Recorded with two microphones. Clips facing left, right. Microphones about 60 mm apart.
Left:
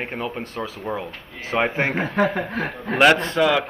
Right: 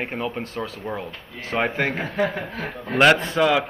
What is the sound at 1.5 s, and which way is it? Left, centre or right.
Speech, centre.